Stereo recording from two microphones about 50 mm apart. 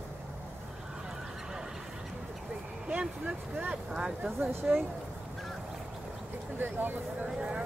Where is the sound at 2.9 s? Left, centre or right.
Right.